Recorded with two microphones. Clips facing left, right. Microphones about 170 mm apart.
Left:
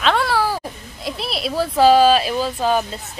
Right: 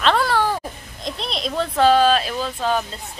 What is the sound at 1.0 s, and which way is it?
Speech, 5° left (ahead or behind).